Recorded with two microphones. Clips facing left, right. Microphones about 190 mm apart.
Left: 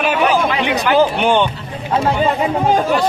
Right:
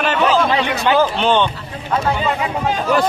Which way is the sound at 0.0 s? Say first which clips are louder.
Left 1 dB; 10° left (ahead or behind).